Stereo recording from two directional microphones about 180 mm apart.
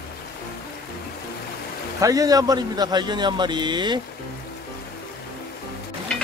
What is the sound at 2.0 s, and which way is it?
A man's voice, 20° right (ahead or behind).